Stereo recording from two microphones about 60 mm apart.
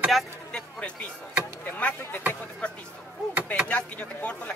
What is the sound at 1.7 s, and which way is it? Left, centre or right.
Speech, left.